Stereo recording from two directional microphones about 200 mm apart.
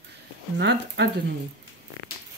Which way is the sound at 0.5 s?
60° right (ahead or behind).